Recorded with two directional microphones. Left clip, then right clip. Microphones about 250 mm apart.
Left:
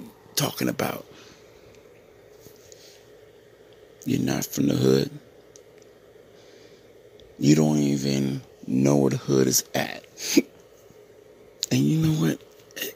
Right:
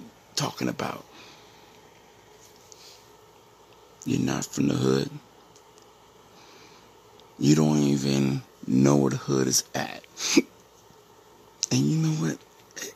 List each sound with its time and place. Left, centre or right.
0.3 s speech: centre
4.0 s speech: centre
7.3 s speech: centre
8.2 s speech: centre
9.0 s speech: centre
10.1 s burping: centre
11.6 s a sound: centre